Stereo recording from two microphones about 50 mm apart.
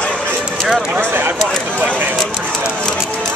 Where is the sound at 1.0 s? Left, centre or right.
Right.